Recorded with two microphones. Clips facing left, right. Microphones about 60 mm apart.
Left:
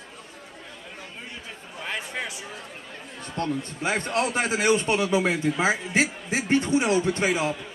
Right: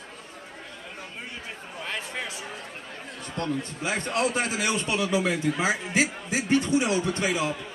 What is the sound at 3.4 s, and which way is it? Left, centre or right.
A man's voice, left.